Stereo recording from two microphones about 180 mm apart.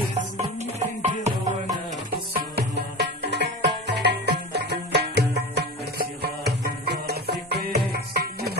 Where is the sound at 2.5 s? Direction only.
70° right (ahead or behind).